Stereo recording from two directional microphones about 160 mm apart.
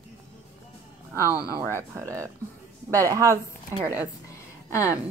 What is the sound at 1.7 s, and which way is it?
Speech, 15° right (ahead or behind).